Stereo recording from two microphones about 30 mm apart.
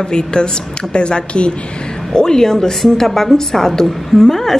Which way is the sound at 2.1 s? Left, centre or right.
Left.